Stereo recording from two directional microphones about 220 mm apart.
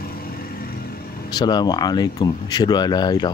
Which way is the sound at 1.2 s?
20° left (ahead or behind).